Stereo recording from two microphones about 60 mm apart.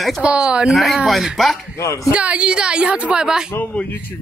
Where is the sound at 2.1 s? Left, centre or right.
Centre.